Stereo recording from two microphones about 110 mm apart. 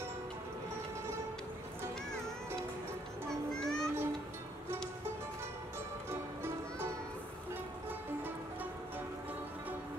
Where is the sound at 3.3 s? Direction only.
5° left (ahead or behind).